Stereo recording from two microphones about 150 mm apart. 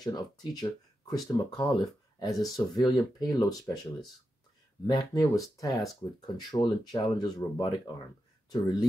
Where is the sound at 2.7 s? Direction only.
25° left (ahead or behind).